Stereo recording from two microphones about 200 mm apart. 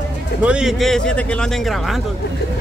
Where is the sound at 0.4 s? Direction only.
5° right (ahead or behind).